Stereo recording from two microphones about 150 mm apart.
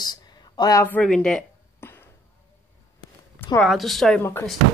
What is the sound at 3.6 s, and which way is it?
Speech, centre (ahead or behind).